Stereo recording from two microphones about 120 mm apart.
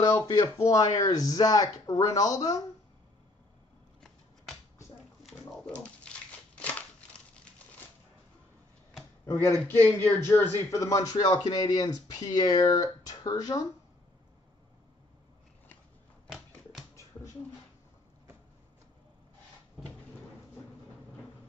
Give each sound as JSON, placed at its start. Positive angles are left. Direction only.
{"t": 0.0, "sound": "a man's voice", "side_deg": 30}
{"t": 5.2, "sound": "a sound", "side_deg": 5}
{"t": 9.2, "sound": "a man's voice", "side_deg": 20}